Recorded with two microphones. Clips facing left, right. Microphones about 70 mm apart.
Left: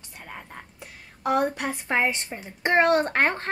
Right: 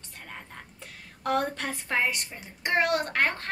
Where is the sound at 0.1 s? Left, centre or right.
Centre.